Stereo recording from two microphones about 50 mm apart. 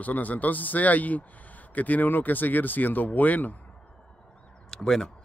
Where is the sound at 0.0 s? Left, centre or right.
Left.